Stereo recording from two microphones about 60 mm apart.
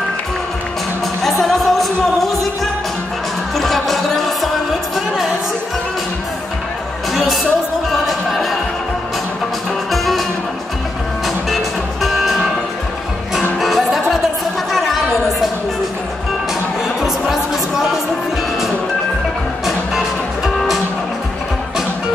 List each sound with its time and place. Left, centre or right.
1.4 s music: centre
7.9 s music: centre
9.8 s music: centre
11.2 s music: centre
13.6 s music: centre
14.7 s a sound: centre
17.0 s music: centre
19.6 s music: centre